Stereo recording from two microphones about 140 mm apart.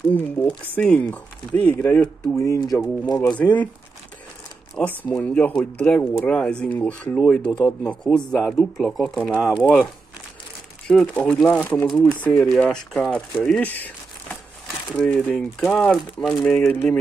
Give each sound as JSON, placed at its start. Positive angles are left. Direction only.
{"t": 0.1, "sound": "speech", "side_deg": 15}
{"t": 2.4, "sound": "speech", "side_deg": 25}
{"t": 3.3, "sound": "speech", "side_deg": 10}
{"t": 4.7, "sound": "speech", "side_deg": 10}
{"t": 10.9, "sound": "speech", "side_deg": 10}
{"t": 13.5, "sound": "crumpling", "side_deg": 10}
{"t": 15.0, "sound": "speech", "side_deg": 5}